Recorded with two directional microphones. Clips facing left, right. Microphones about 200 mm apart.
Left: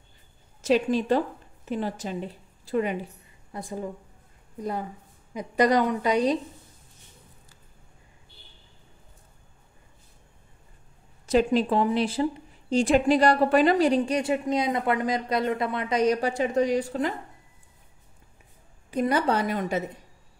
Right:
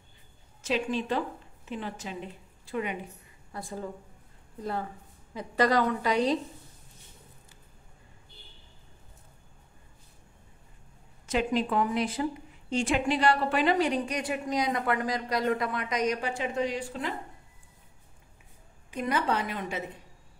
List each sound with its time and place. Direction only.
0.6 s a woman's voice: 40° left (ahead or behind)
3.5 s a woman's voice: 20° left (ahead or behind)
11.2 s speech: 35° left (ahead or behind)
18.9 s speech: 40° left (ahead or behind)